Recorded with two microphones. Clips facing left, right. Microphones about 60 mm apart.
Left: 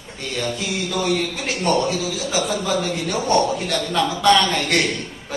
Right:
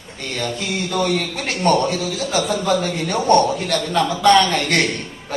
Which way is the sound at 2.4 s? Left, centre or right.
Centre.